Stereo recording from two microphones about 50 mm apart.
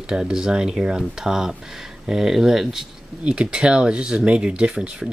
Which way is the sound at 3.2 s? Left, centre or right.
Centre.